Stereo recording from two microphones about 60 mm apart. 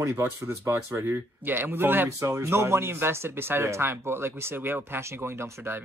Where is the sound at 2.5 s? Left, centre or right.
Right.